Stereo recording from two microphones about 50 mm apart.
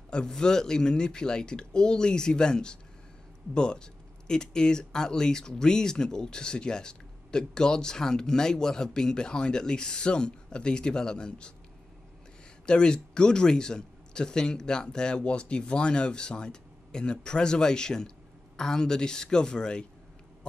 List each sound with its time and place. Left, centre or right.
0.1 s speech: centre
12.6 s speech: centre